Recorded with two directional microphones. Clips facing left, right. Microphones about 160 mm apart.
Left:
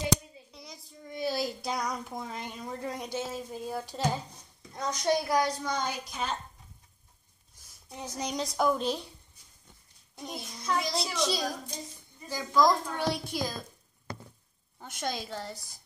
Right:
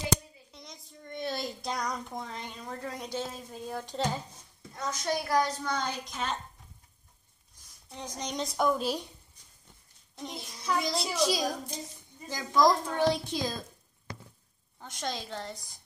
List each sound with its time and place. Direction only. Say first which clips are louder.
0.5 s a woman's voice: left 1 dB; centre (ahead or behind)
4.7 s a woman's voice: left 4 dB; 20° left (ahead or behind)
7.9 s a woman's voice: left 2 dB; 10° left (ahead or behind)
10.1 s a woman's voice: left 1 dB; 5° left (ahead or behind)
11.1 s a woman's voice: right 4 dB; 10° right (ahead or behind)
14.8 s a woman's voice: left 1 dB; 10° left (ahead or behind)